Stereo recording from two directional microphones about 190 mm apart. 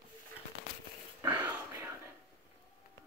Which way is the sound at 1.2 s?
10° right (ahead or behind).